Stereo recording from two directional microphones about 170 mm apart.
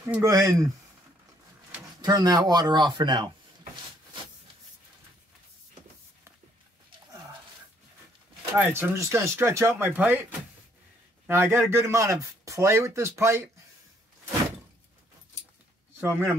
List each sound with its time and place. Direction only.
0.0 s speech: 15° right (ahead or behind)
2.0 s speech: 20° right (ahead or behind)
8.5 s a man's voice: 10° right (ahead or behind)
11.2 s a man's voice: 15° right (ahead or behind)
16.0 s a man's voice: 15° right (ahead or behind)